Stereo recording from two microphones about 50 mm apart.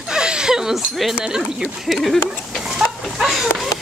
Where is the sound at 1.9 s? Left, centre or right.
Centre.